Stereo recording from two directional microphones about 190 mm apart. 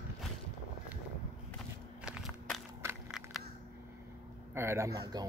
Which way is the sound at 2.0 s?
Centre (ahead or behind).